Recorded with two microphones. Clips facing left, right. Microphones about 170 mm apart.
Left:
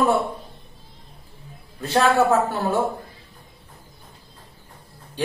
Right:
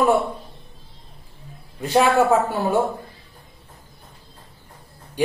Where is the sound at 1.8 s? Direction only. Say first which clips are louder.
Right 3 dB; 15° right (ahead or behind).